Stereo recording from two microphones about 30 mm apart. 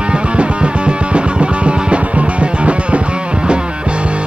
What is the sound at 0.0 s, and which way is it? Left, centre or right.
Music, right.